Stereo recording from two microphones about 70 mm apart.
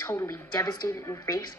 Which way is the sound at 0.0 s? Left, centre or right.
Left.